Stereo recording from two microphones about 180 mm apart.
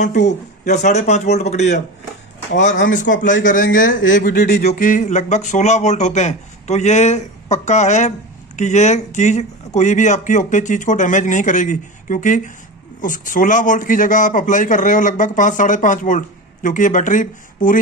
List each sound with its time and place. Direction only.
0.3 s a man's voice: 40° left (ahead or behind)